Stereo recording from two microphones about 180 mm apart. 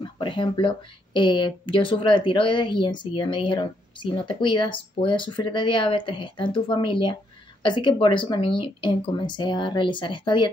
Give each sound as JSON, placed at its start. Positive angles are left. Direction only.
{"t": 0.0, "sound": "speech", "side_deg": 25}